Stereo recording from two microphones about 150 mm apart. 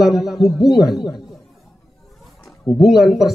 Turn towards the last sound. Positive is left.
turn(degrees=0)  # may be behind; listen again after turning